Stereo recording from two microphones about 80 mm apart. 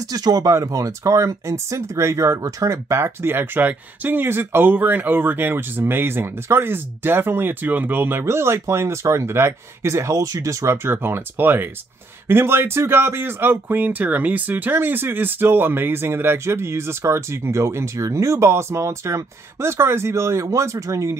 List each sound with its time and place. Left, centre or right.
0.0 s speech: right